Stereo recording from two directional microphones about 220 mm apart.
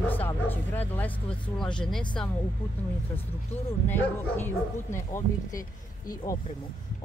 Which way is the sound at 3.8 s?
10° left (ahead or behind).